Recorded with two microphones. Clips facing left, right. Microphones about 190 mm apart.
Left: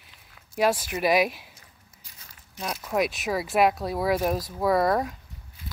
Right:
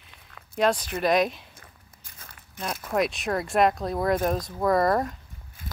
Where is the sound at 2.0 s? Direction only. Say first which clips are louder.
Right 5 dB; 55° right (ahead or behind).